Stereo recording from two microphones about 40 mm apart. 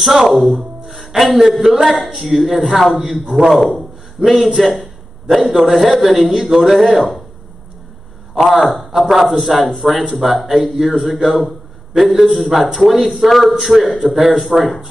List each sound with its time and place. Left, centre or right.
0.0 s a man's voice: centre
8.5 s a man's voice: centre
14.5 s speech: right